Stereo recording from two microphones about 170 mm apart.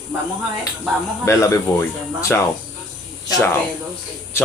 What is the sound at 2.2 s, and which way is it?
Speech, 15° left (ahead or behind).